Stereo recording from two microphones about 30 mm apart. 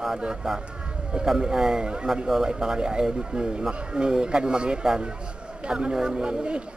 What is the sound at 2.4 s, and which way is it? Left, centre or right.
Speech, right.